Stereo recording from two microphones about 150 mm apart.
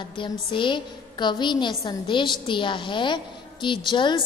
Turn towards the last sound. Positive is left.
turn(degrees=30)  # may be behind; listen again after turning